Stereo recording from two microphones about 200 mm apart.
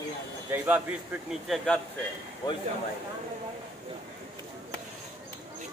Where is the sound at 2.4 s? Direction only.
20° left (ahead or behind).